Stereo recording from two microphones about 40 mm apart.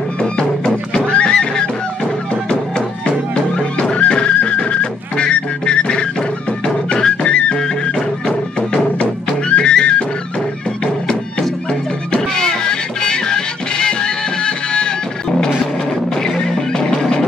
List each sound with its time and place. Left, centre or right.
0.2 s music: left
3.9 s music: left
9.5 s music: left
12.1 s music: centre
16.3 s music: centre